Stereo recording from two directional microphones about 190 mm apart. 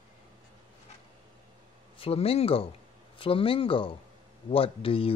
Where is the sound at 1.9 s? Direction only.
30° left (ahead or behind).